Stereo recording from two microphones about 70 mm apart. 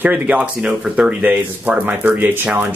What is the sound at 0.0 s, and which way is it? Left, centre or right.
Speech, right.